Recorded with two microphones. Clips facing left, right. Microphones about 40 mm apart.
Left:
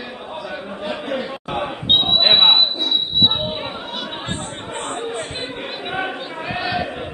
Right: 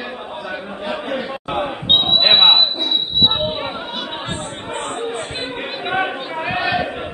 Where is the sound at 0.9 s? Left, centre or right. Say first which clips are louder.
Right 1 dB; centre.